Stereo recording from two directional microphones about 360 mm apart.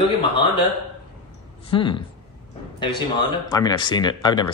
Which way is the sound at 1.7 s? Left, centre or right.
Centre.